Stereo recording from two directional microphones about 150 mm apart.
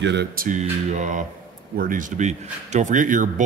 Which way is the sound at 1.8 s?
65° right (ahead or behind).